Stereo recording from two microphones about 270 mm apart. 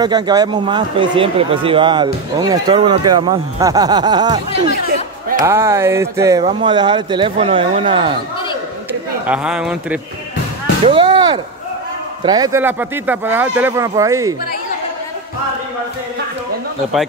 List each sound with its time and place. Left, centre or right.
0.0 s speech: centre
5.4 s speech: centre
9.2 s speech: centre
10.9 s chop: centre
12.2 s speech: centre